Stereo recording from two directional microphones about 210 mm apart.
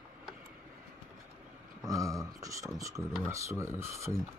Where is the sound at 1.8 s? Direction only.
15° right (ahead or behind).